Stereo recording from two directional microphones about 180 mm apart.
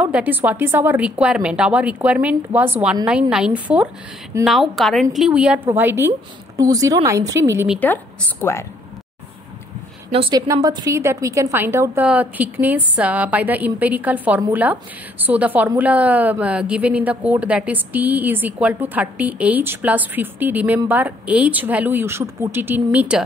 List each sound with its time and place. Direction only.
0.0 s a woman's voice: 10° right (ahead or behind)
4.5 s a woman's voice: centre (ahead or behind); by 7.6 s 15° right (ahead or behind)
7.8 s a woman's voice: 10° left (ahead or behind)
10.1 s a woman's voice: 30° right (ahead or behind); by 23.2 s 5° right (ahead or behind)